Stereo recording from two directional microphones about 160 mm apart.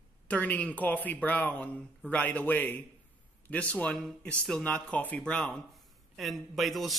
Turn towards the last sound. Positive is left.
turn(degrees=0)  # may be behind; listen again after turning